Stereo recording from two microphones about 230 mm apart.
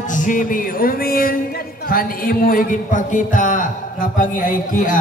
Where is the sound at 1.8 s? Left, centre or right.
Left.